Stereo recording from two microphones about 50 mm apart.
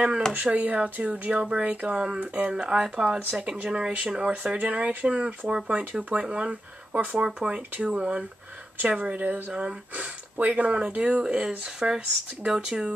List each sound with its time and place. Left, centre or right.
0.3 s speech: right
7.2 s speech: centre; by 9.4 s right
9.5 s speech: centre